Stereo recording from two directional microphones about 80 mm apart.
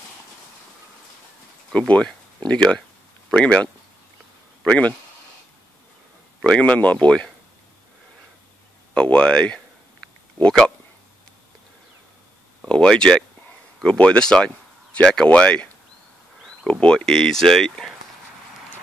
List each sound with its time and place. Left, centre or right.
1.7 s speech: centre
6.4 s speech: centre
8.9 s speech: centre
12.6 s speech: centre
16.8 s speech: centre